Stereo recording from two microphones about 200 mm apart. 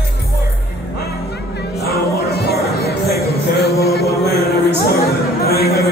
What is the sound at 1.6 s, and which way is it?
Music, 55° left (ahead or behind).